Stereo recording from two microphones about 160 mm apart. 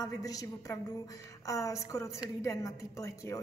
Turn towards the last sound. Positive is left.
turn(degrees=20)  # may be behind; listen again after turning